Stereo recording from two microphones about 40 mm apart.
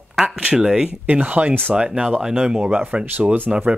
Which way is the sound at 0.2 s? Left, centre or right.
Centre.